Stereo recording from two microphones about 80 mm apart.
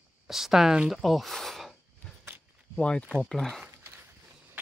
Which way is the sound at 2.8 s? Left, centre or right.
Centre.